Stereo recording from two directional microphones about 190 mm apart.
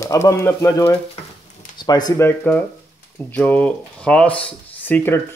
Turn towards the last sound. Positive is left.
turn(degrees=10)  # may be behind; listen again after turning